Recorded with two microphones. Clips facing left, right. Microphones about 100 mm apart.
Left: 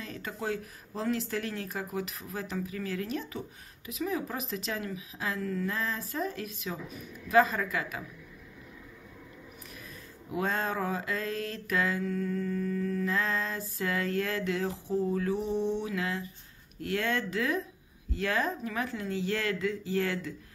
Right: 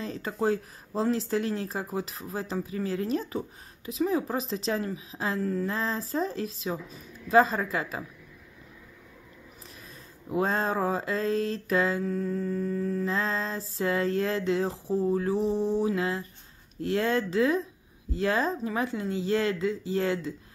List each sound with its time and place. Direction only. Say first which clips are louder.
0.0 s speech: right 8 dB; 30° right (ahead or behind)
10.3 s mantra: right 4 dB; 30° right (ahead or behind)